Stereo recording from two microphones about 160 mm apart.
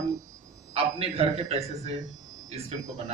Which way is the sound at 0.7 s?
35° right (ahead or behind).